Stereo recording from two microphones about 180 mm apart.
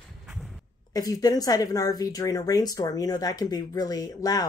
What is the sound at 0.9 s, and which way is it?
Speech, 20° left (ahead or behind).